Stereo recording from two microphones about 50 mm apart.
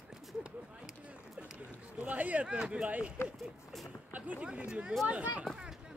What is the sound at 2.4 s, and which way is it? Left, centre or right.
Speech, centre.